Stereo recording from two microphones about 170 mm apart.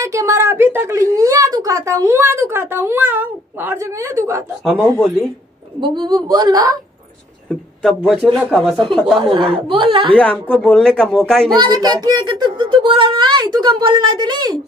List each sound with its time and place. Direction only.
0.0 s a woman's voice: 20° right (ahead or behind)
5.8 s a child's voice: 25° right (ahead or behind)
7.4 s speech: 5° left (ahead or behind)
9.2 s speech: 30° right (ahead or behind)
10.1 s speech: 5° left (ahead or behind)
11.6 s a child's voice: 25° right (ahead or behind)